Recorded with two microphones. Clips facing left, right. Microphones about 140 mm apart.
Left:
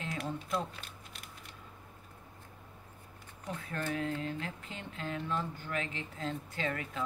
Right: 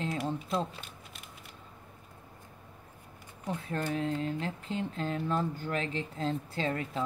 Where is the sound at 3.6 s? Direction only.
30° right (ahead or behind).